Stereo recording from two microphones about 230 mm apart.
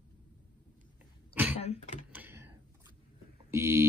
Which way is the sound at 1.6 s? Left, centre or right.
Left.